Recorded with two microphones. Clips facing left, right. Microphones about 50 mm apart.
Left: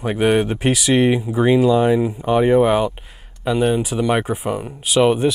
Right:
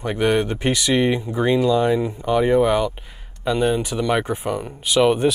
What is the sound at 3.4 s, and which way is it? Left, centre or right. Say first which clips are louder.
Speech: left 2 dB; centre.